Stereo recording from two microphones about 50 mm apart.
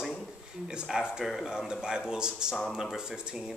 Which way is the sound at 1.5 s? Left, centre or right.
Centre.